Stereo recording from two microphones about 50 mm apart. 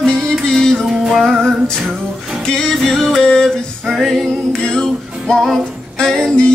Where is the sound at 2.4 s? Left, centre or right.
Centre.